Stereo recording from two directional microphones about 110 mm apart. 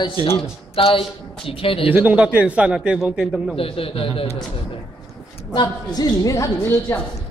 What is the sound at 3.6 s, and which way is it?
Speech, 55° left (ahead or behind).